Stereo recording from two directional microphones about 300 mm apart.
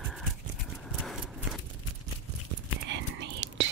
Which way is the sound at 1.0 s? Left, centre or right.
Centre.